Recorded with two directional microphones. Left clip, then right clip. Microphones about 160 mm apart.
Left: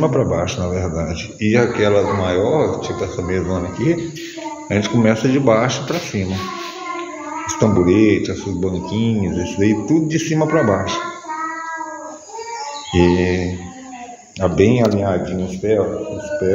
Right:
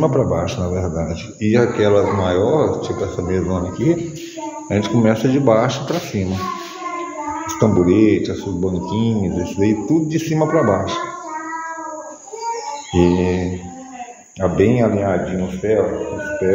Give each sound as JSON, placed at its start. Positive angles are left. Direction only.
{"t": 0.0, "sound": "speech", "side_deg": 5}
{"t": 7.4, "sound": "speech", "side_deg": 5}
{"t": 12.9, "sound": "speech", "side_deg": 10}
{"t": 14.4, "sound": "speech", "side_deg": 25}